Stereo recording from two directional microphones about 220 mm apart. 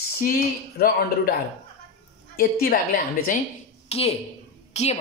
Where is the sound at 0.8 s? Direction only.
45° left (ahead or behind).